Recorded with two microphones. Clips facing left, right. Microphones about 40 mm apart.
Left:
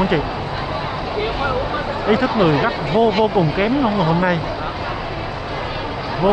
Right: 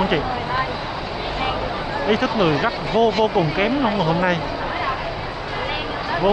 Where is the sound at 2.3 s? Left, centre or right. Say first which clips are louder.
Left 3 dB; centre.